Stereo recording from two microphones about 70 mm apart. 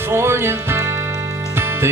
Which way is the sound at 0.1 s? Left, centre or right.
Right.